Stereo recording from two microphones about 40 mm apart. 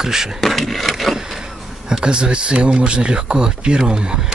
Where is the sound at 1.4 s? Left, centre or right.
Centre.